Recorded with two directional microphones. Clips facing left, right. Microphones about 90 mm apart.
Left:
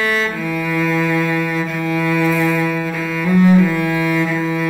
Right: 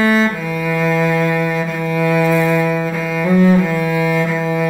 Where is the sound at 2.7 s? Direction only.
20° right (ahead or behind).